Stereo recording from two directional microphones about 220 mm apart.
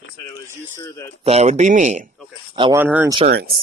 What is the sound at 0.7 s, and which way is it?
Speech, 15° left (ahead or behind).